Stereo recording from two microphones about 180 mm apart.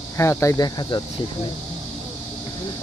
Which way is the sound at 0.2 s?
15° left (ahead or behind).